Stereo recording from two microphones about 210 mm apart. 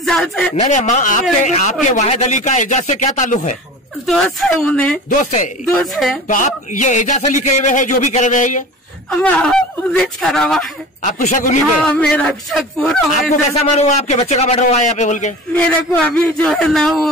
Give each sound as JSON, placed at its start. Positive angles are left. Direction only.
{"t": 0.0, "sound": "speech", "side_deg": 5}
{"t": 0.6, "sound": "a man's voice", "side_deg": 35}
{"t": 4.0, "sound": "speech", "side_deg": 0}
{"t": 5.2, "sound": "a man's voice", "side_deg": 35}
{"t": 9.2, "sound": "speech", "side_deg": 5}
{"t": 11.0, "sound": "a man's voice", "side_deg": 35}
{"t": 11.8, "sound": "speech", "side_deg": 5}
{"t": 13.6, "sound": "a man's voice", "side_deg": 30}
{"t": 15.5, "sound": "speech", "side_deg": 5}